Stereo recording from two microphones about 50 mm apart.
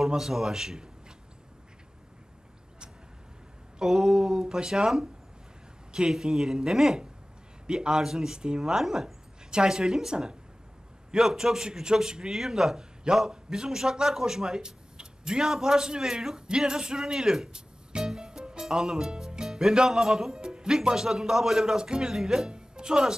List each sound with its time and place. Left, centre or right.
0.0 s a man's voice: centre
3.8 s a man's voice: centre